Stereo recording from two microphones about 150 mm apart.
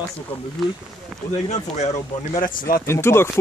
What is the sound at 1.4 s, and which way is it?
Speech, 50° left (ahead or behind).